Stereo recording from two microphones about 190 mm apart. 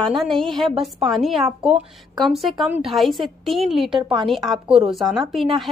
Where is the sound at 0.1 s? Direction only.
Centre (ahead or behind).